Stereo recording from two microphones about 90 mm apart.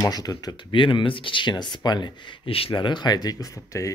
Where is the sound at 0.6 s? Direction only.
65° left (ahead or behind).